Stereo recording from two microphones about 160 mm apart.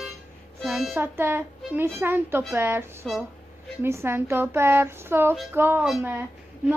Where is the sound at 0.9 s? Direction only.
15° right (ahead or behind).